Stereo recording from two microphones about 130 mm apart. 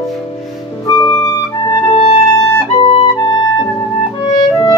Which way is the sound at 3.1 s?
30° left (ahead or behind).